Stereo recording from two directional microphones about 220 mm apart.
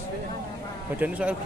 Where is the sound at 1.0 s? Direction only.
5° right (ahead or behind).